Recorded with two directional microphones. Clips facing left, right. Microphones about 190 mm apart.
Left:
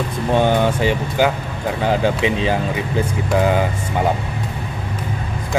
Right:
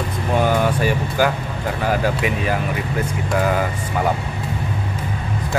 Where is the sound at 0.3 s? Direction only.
25° left (ahead or behind).